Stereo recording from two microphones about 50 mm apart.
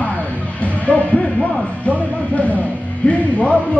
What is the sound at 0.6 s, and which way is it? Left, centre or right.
Speech, left.